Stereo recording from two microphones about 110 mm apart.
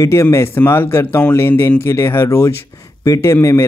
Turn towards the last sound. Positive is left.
turn(degrees=25)  # may be behind; listen again after turning